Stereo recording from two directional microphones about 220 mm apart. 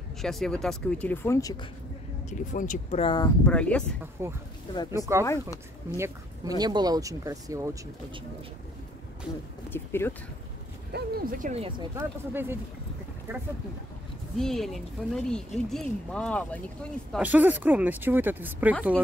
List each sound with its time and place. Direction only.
0.2 s speech: centre (ahead or behind)
2.2 s speech: 35° left (ahead or behind); by 3.3 s 20° left (ahead or behind)
3.4 s speech: 5° left (ahead or behind)
4.2 s speech: 10° right (ahead or behind)
5.2 s speech: 15° left (ahead or behind)
5.9 s a woman's voice: 10° right (ahead or behind)
9.7 s speech: 10° left (ahead or behind)
10.9 s speech: 40° right (ahead or behind)
11.9 s speech: 10° right (ahead or behind)
14.4 s speech: centre (ahead or behind)
17.2 s speech: 5° right (ahead or behind)